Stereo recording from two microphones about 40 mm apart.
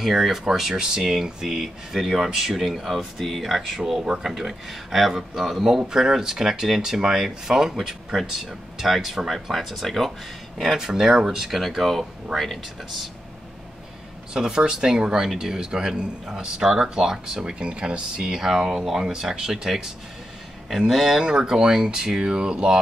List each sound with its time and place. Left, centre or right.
0.0 s speech: centre
3.8 s speech: centre
9.1 s speech: centre
9.5 s speech: centre
10.8 s speech: centre
11.5 s speech: centre
14.3 s speech: centre
18.2 s speech: centre
20.9 s speech: centre
21.2 s speech: centre